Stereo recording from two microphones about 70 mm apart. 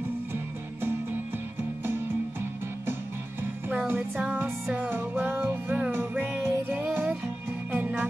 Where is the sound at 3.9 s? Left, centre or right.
Centre.